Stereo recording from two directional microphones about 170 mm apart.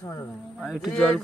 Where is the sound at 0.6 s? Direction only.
Centre (ahead or behind).